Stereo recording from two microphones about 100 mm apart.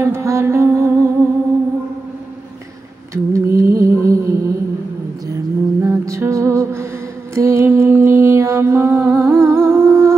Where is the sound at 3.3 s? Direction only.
30° right (ahead or behind).